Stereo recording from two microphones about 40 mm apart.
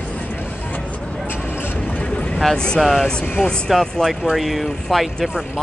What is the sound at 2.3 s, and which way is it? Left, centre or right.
Speech, centre.